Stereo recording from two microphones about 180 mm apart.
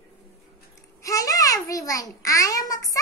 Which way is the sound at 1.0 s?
20° left (ahead or behind).